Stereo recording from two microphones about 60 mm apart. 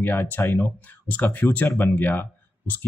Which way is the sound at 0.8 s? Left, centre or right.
Left.